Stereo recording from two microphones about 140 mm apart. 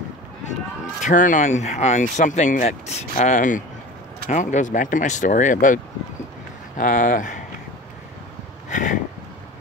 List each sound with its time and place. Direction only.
1.0 s speech: 65° left (ahead or behind)
6.8 s speech: 70° left (ahead or behind)
8.6 s a sound: 65° left (ahead or behind)